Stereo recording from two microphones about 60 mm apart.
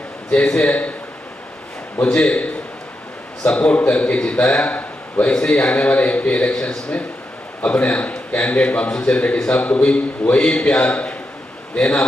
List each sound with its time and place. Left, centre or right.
0.3 s speech: centre
2.0 s a man's voice: centre
5.3 s a man's voice: centre